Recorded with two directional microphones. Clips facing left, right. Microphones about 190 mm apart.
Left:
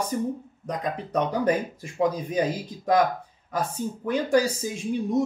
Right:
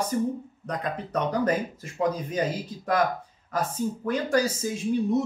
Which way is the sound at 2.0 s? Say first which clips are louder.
Left 2 dB; 15° left (ahead or behind).